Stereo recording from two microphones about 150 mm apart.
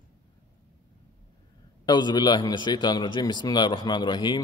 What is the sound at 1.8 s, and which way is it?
A man's voice, 30° left (ahead or behind).